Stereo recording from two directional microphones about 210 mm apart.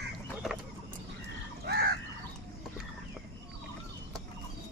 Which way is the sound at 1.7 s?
50° right (ahead or behind).